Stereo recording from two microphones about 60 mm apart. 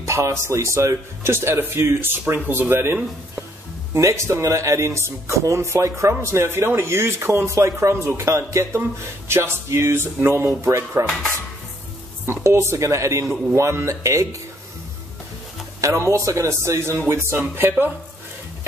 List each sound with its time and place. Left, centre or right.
0.0 s speech: right
4.0 s speech: right
11.0 s speech: right
12.3 s speech: right
15.8 s speech: right